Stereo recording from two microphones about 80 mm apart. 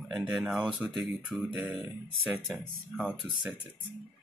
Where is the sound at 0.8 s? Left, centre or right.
Right.